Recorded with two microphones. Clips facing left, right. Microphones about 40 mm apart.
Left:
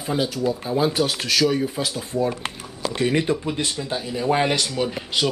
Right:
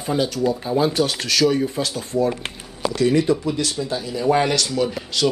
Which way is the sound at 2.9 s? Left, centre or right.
Left.